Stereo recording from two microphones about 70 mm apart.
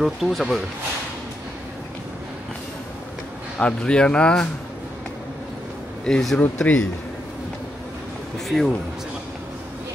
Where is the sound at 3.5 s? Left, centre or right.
Centre.